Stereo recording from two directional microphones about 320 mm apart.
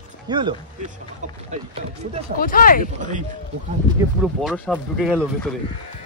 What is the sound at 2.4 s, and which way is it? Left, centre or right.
Speech, left.